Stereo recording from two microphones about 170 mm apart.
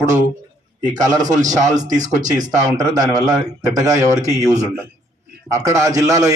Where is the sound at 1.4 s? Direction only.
45° right (ahead or behind).